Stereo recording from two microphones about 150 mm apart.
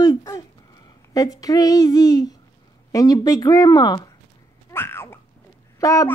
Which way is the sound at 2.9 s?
25° left (ahead or behind).